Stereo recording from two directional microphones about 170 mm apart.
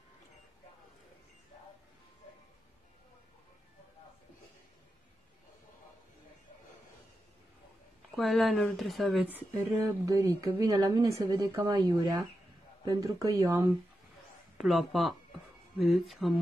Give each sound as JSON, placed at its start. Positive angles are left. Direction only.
{"t": 8.2, "sound": "speech", "side_deg": 0}
{"t": 10.0, "sound": "a woman's voice", "side_deg": -20}
{"t": 14.6, "sound": "speech", "side_deg": 0}